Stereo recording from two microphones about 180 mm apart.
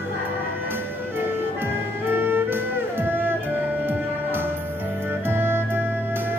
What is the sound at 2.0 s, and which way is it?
Music, 10° right (ahead or behind).